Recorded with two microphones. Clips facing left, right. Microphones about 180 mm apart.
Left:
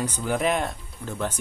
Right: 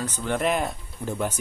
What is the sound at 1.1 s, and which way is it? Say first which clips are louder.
Speech: right 2 dB; 10° right (ahead or behind).